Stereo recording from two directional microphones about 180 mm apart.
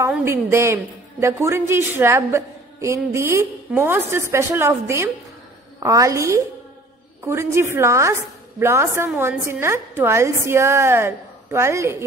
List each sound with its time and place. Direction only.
0.1 s a woman's voice: 15° right (ahead or behind)